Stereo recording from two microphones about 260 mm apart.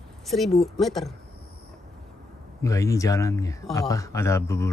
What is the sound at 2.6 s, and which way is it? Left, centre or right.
Speech, centre.